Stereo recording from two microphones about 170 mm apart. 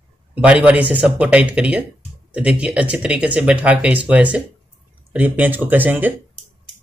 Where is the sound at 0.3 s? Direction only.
10° right (ahead or behind).